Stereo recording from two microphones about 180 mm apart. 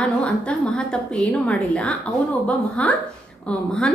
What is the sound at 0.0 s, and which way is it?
A woman's voice, 5° left (ahead or behind).